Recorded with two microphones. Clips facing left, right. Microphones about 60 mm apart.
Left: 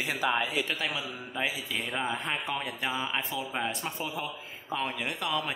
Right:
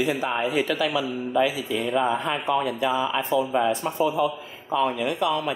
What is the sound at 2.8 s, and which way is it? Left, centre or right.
Speech, right.